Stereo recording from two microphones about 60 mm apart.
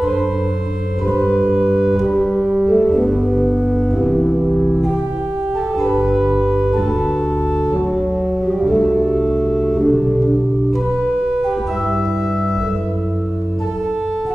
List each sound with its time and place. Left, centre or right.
1.3 s organ: centre
1.8 s music: centre
6.0 s organ: centre
8.5 s music: centre